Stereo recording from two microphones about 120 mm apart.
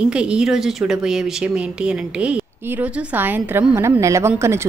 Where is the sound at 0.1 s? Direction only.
10° right (ahead or behind).